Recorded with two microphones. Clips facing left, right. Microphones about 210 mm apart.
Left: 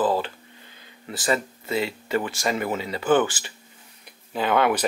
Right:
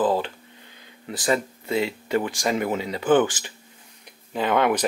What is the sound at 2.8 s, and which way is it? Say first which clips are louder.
Speech: right 1 dB; 5° left (ahead or behind).